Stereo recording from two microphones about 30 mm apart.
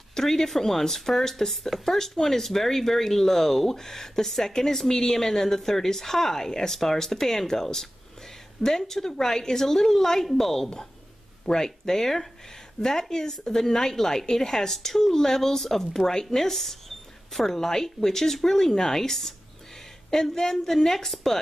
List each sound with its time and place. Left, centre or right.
0.1 s speech: centre